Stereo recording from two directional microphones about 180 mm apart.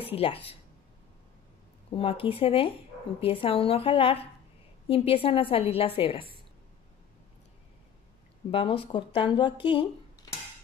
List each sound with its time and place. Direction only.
0.0 s speech: 30° left (ahead or behind)
1.9 s a woman's voice: 30° left (ahead or behind)
8.5 s speech: 30° left (ahead or behind)